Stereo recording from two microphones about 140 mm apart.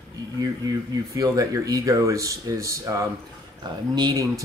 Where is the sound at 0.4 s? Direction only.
25° right (ahead or behind).